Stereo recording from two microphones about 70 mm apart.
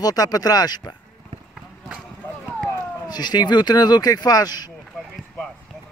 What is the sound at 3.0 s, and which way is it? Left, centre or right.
Speech, left.